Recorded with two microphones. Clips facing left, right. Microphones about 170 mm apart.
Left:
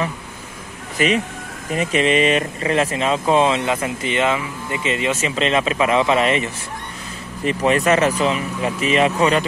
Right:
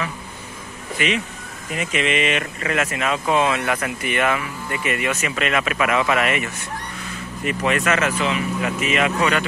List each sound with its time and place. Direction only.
0.9 s speech: 40° left (ahead or behind)